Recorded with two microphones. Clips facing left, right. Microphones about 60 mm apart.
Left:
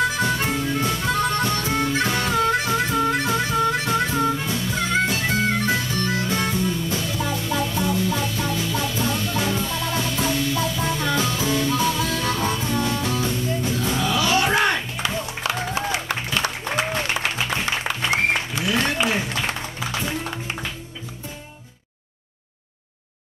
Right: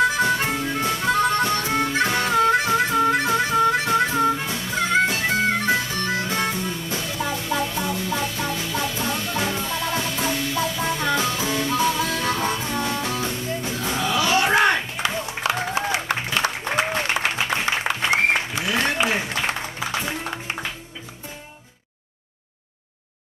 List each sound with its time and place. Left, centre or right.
0.0 s harmonica: right
18.2 s music: right